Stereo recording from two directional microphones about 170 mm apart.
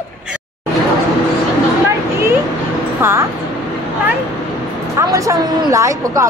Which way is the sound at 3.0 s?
15° right (ahead or behind).